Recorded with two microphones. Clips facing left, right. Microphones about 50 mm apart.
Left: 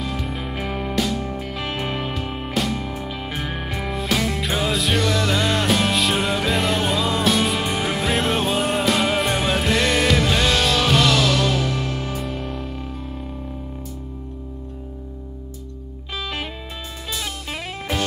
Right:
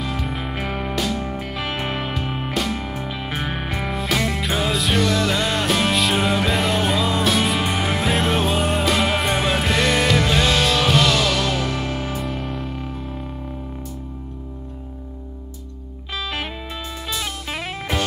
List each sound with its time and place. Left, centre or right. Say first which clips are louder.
0.0 s music: right 1 dB; centre
1.2 s music: right 1 dB; centre
11.7 s music: right 1 dB; centre
12.2 s music: right 1 dB; centre
16.1 s music: right 1 dB; centre
17.2 s music: right 2 dB; centre